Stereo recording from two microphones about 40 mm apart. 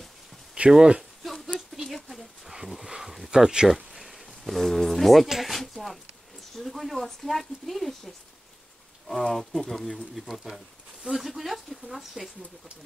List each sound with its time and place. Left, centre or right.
0.7 s speech: right
1.2 s a sound: centre
3.3 s speech: centre
3.6 s speech: centre
5.6 s a sound: centre
6.6 s speech: centre